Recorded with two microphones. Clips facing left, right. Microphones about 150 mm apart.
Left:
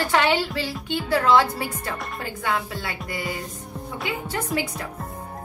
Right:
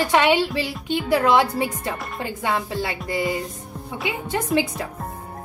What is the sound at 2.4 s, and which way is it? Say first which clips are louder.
Speech: right 3 dB; 25° right (ahead or behind).